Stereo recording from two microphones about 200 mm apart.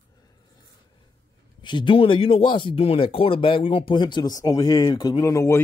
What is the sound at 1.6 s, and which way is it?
Speech, 25° left (ahead or behind).